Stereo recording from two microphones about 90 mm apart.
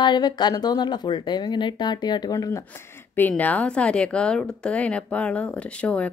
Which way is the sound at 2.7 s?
20° left (ahead or behind).